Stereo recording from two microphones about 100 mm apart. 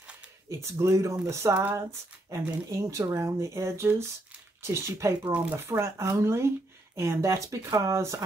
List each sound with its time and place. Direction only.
0.5 s speech: 30° right (ahead or behind)
2.2 s speech: 30° right (ahead or behind)